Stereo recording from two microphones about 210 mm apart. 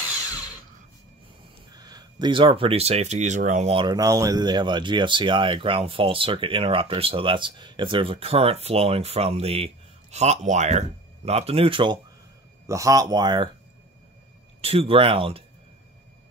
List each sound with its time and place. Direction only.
1.7 s speech: 20° right (ahead or behind)
14.6 s speech: 25° right (ahead or behind)